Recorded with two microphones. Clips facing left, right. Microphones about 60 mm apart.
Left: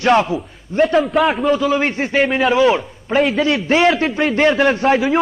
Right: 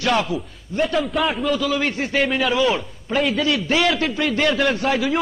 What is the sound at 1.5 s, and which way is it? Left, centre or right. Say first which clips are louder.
Speech: left 5 dB; left.